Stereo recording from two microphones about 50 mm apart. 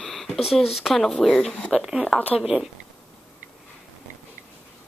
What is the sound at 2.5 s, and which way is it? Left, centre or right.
Speech, right.